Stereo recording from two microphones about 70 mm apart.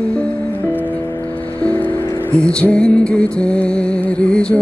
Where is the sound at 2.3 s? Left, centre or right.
Centre.